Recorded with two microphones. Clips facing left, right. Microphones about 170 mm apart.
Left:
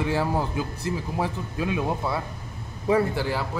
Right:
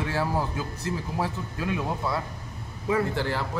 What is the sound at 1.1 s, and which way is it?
A man's voice, 20° left (ahead or behind).